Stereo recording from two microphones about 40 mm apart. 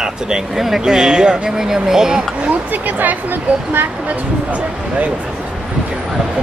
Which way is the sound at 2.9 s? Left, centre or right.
Right.